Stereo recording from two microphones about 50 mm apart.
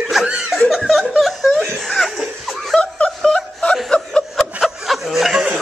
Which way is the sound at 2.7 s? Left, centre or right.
Centre.